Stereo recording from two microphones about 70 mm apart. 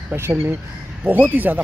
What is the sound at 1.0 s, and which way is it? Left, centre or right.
Speech, right.